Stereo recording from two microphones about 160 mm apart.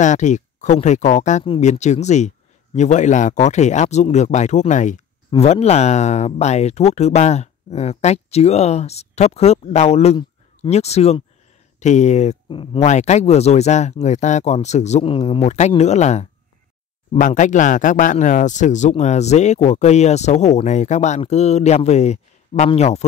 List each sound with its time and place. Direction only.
0.0 s speech: 50° left (ahead or behind)
1.4 s speech: 35° left (ahead or behind)
1.7 s speech: 45° left (ahead or behind)
12.4 s speech: 30° left (ahead or behind)
12.8 s speech: 45° left (ahead or behind)